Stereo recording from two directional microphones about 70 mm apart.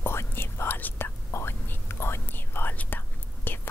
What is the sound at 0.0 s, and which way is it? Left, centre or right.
Whispering, left.